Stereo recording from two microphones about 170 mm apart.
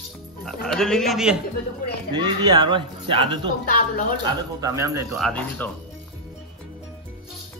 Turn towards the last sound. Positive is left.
turn(degrees=10)  # may be behind; listen again after turning